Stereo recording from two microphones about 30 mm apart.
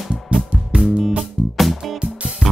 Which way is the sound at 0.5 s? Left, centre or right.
Right.